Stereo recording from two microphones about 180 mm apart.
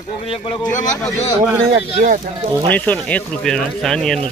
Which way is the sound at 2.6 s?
10° left (ahead or behind).